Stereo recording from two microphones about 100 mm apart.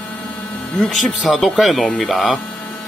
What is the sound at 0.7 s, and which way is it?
Speech, centre (ahead or behind).